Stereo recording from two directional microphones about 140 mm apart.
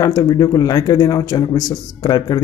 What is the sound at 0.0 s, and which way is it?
Speech, 25° left (ahead or behind).